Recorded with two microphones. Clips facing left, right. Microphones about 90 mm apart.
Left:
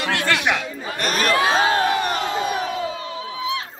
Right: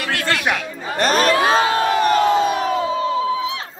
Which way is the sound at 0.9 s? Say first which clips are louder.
Right 6 dB; 35° right (ahead or behind).